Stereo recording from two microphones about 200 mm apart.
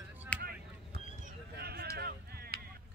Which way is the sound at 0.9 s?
50° right (ahead or behind).